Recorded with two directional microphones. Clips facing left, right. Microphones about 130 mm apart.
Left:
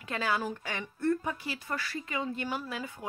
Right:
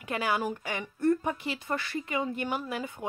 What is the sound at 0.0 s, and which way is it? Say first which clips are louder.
Speech: right 2 dB; 15° right (ahead or behind).